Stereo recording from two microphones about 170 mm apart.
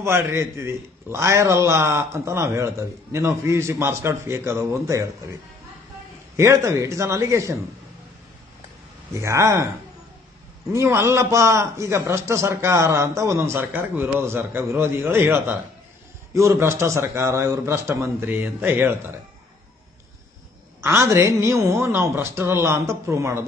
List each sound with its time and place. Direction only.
0.0 s a man's voice: 15° right (ahead or behind)
9.1 s a man's voice: 15° right (ahead or behind)
10.7 s a man's voice: 15° right (ahead or behind)
20.8 s a man's voice: 15° right (ahead or behind)